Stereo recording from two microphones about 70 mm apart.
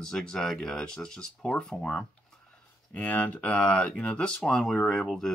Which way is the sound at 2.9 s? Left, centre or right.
Left.